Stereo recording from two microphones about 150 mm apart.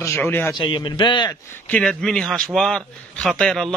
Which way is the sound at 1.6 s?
5° left (ahead or behind).